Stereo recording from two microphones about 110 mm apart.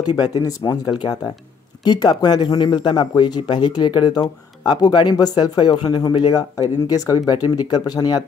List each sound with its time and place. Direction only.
0.0 s speech: 35° left (ahead or behind)